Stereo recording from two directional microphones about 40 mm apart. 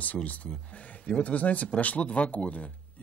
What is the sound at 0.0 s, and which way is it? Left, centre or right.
Speech, left.